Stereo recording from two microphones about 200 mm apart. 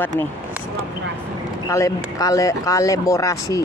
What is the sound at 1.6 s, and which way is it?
Speech, 15° left (ahead or behind).